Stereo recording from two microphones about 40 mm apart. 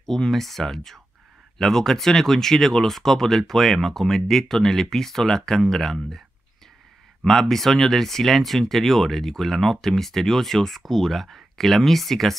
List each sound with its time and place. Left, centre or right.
0.0 s speech: centre
7.2 s speech: centre